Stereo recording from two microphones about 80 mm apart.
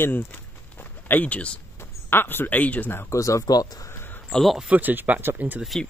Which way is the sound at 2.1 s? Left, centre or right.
Left.